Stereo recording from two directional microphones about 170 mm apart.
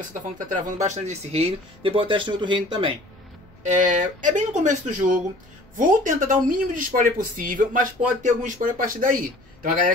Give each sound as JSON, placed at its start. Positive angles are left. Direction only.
{"t": 0.1, "sound": "speech", "side_deg": -45}
{"t": 3.6, "sound": "speech", "side_deg": -45}